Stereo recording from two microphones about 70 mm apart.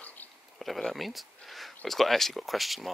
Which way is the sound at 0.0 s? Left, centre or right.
Left.